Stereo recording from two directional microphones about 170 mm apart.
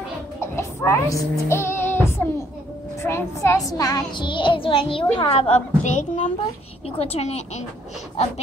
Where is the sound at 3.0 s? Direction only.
15° left (ahead or behind); by 7.6 s 40° left (ahead or behind).